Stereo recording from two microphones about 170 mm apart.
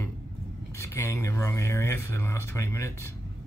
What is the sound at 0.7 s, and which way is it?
Speech, 15° left (ahead or behind).